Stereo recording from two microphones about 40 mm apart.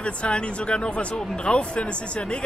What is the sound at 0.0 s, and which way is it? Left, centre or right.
Speech, left.